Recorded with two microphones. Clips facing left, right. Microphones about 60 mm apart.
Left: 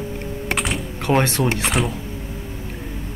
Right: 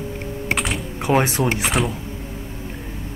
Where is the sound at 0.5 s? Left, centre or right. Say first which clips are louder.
Even; centre.